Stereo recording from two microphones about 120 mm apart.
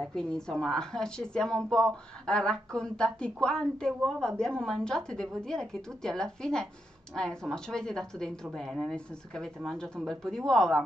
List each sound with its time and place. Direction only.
0.0 s a woman's voice: 5° left (ahead or behind)